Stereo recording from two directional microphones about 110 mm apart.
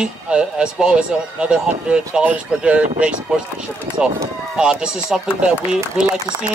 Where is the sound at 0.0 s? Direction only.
5° right (ahead or behind).